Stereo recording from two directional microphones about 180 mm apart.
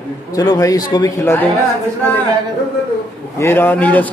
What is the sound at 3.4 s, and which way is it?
Speech, 10° left (ahead or behind).